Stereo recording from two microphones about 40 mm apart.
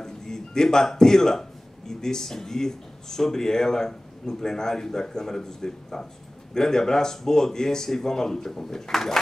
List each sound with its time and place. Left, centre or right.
0.0 s speech: centre